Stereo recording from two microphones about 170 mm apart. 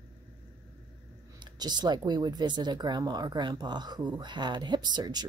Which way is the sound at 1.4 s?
25° right (ahead or behind).